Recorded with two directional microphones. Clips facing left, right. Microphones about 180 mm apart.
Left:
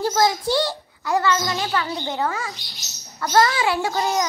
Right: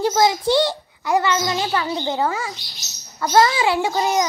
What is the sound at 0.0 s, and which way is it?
A child's voice, 20° right (ahead or behind).